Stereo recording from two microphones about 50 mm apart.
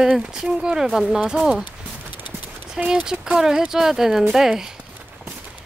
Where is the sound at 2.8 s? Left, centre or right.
Centre.